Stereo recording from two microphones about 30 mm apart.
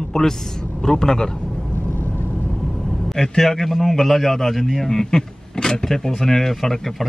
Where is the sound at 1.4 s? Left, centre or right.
Centre.